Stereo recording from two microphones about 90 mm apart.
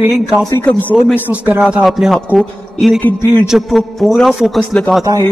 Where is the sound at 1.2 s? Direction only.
20° right (ahead or behind).